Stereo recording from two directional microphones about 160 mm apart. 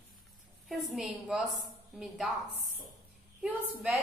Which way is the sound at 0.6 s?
Centre (ahead or behind).